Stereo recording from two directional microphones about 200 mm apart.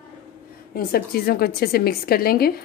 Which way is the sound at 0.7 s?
50° left (ahead or behind).